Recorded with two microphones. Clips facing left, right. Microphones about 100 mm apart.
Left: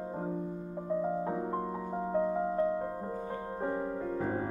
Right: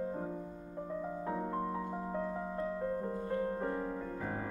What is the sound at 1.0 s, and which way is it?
Music, 25° left (ahead or behind).